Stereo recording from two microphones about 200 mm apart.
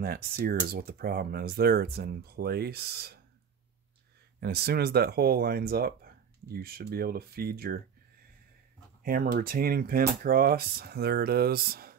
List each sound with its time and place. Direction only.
0.0 s speech: 50° right (ahead or behind)
4.4 s speech: 50° right (ahead or behind)
9.0 s speech: 45° right (ahead or behind)